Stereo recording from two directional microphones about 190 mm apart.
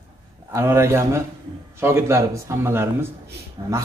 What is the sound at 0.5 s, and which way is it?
A man's voice, 15° right (ahead or behind).